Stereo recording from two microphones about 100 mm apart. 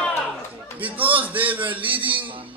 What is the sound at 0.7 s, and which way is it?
A man's voice, 15° right (ahead or behind).